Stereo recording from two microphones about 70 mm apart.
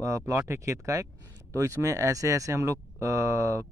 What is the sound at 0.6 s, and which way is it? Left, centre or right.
Speech, right.